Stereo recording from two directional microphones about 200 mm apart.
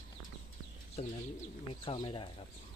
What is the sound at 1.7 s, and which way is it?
Speech, 25° left (ahead or behind).